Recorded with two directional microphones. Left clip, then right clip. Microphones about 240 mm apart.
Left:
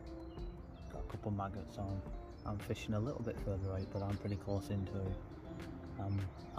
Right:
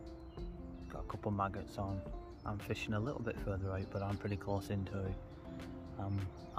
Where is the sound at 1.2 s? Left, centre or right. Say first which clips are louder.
Right 5 dB; centre.